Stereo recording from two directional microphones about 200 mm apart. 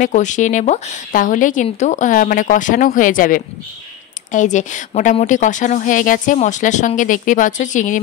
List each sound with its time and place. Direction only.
0.0 s a woman's voice: 40° left (ahead or behind)